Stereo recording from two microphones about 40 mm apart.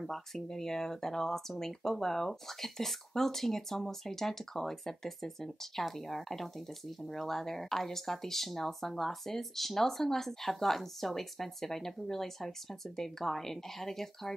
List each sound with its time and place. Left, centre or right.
0.0 s speech: centre